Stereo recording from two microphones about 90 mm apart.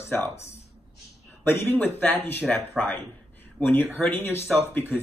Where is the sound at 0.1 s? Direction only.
25° left (ahead or behind).